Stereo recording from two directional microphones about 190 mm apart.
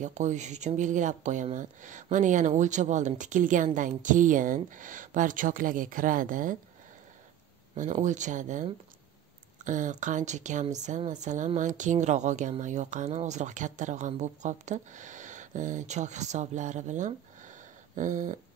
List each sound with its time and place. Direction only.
0.0 s a woman's voice: 40° right (ahead or behind)
7.7 s a woman's voice: 40° right (ahead or behind)